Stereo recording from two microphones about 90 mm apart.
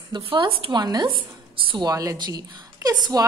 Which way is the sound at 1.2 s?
75° right (ahead or behind).